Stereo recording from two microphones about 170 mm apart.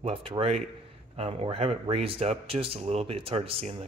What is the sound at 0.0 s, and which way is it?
Speech, 35° right (ahead or behind).